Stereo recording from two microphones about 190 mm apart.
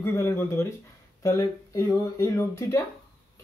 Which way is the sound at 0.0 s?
10° left (ahead or behind).